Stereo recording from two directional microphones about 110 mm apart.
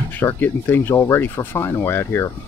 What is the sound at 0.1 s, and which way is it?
Speech, 20° left (ahead or behind).